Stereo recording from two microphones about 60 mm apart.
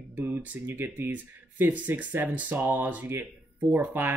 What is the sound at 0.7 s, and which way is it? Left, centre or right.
Speech, right.